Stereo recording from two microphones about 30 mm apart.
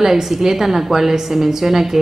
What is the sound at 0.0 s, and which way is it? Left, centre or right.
A woman's voice, centre.